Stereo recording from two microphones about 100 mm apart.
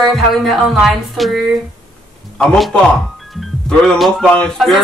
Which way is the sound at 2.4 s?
5° left (ahead or behind).